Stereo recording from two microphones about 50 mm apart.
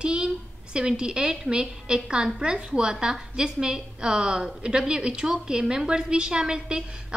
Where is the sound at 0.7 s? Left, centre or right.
Centre.